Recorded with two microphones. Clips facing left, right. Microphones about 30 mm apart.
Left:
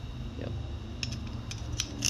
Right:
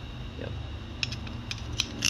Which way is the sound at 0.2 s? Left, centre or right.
Right.